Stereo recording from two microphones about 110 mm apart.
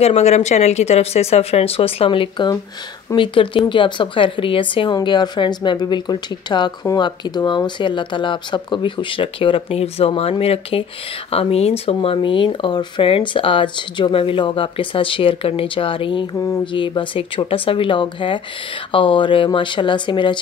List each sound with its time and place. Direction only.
0.0 s speech: 85° left; by 4.9 s 50° left (ahead or behind)
4.9 s speech: 40° left (ahead or behind)